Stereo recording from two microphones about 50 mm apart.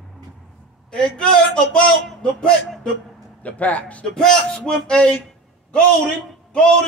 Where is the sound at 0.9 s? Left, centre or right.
Centre.